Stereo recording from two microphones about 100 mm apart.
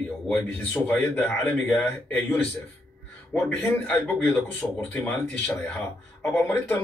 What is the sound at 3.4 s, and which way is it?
A man's voice, 15° left (ahead or behind).